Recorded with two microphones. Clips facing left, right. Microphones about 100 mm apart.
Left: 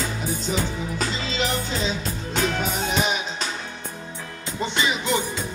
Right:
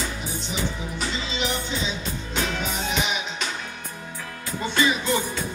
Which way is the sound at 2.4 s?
40° left (ahead or behind).